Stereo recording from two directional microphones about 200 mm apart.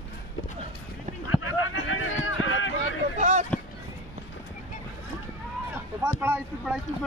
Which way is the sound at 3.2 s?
35° right (ahead or behind).